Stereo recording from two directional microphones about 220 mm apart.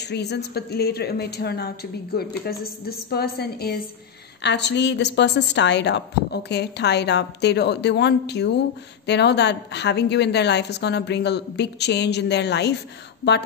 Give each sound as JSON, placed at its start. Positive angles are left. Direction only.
{"t": 0.1, "sound": "a woman's voice", "side_deg": 50}